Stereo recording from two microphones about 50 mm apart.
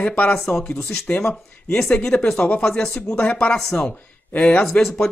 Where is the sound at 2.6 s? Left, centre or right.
Centre.